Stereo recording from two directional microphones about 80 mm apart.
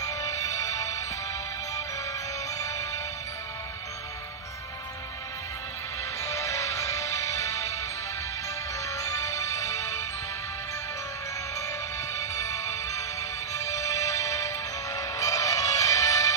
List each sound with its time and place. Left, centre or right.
0.0 s music: left
2.6 s music: left
6.2 s music: left
8.8 s music: left
12.1 s music: left